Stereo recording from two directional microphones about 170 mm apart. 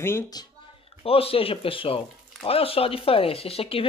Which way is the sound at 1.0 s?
35° left (ahead or behind).